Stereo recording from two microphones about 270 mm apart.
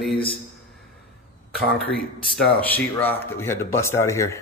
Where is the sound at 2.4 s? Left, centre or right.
Centre.